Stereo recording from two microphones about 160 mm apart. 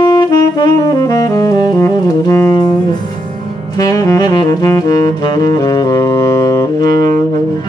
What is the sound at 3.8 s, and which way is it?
Saxophone, 20° left (ahead or behind).